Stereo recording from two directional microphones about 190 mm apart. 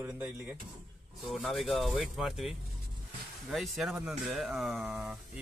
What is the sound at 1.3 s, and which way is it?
Speech, centre (ahead or behind).